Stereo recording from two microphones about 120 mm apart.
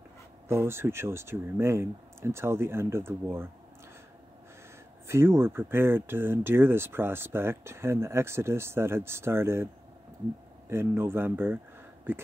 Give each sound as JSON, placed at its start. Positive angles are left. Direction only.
{"t": 0.5, "sound": "speech", "side_deg": -20}
{"t": 5.0, "sound": "speech", "side_deg": -20}
{"t": 10.7, "sound": "speech", "side_deg": -20}